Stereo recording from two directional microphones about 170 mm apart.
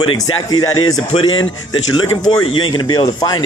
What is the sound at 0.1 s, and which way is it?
A man's voice, 25° left (ahead or behind).